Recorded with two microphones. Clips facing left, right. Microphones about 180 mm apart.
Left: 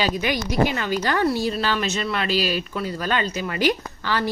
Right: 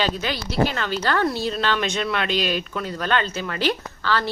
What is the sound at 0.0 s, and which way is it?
Speech, 15° left (ahead or behind).